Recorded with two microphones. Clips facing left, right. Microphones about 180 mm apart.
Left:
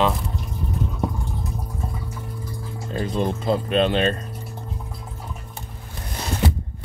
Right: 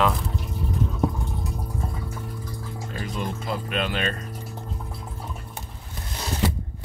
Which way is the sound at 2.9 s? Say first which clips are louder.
Left 8 dB; 30° left (ahead or behind).